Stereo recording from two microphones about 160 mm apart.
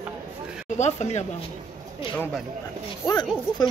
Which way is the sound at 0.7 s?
45° left (ahead or behind).